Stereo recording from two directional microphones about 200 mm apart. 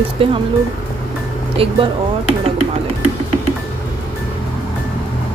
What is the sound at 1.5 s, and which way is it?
Speech, 30° right (ahead or behind).